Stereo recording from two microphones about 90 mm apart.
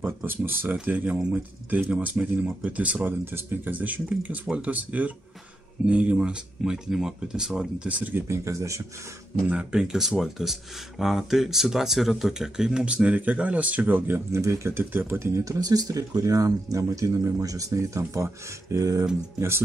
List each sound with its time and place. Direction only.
0.0 s speech: 25° right (ahead or behind)
8.3 s speech: 35° right (ahead or behind)
9.5 s speech: 10° right (ahead or behind); by 19.0 s 40° right (ahead or behind)